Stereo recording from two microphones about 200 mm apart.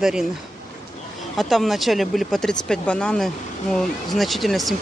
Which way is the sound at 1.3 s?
Centre (ahead or behind).